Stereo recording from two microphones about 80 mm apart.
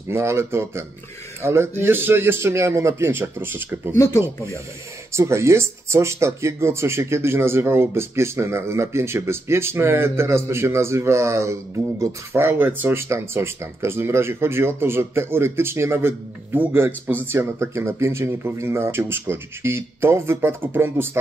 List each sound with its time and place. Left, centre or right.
0.1 s speech: right
3.9 s speech: left
5.1 s speech: right